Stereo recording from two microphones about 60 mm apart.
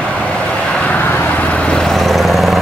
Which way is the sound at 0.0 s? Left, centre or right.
Centre.